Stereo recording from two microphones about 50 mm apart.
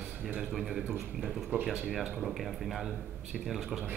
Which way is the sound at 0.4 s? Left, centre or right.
Centre.